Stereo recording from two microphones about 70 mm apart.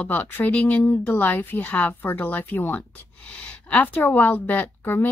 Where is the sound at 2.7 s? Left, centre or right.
Centre.